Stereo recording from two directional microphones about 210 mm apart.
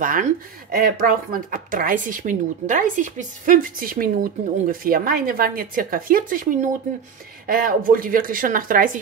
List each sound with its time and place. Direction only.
0.0 s speech: 40° right (ahead or behind)